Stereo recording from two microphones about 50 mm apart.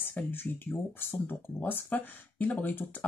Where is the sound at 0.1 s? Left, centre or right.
Left.